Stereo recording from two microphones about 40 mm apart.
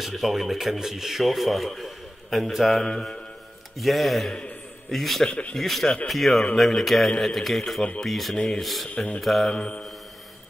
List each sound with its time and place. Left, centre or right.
0.1 s speech: centre
2.8 s speech: centre
3.7 s speech: centre
5.2 s speech: left
5.6 s speech: centre
8.8 s speech: left
9.2 s speech: centre
9.5 s speech: left